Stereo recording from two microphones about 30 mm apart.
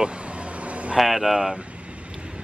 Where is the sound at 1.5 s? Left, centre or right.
Right.